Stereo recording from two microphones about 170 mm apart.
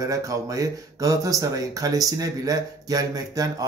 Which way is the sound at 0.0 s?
20° right (ahead or behind).